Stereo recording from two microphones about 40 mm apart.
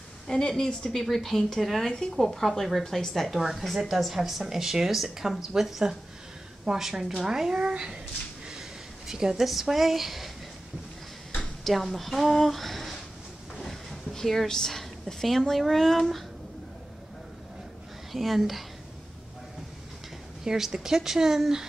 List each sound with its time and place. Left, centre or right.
0.3 s speech: centre
1.9 s a woman's voice: centre
3.3 s a woman's voice: centre
11.6 s a woman's voice: centre
13.6 s a sound: centre
15.5 s a woman's voice: centre
18.1 s a woman's voice: centre
20.4 s speech: centre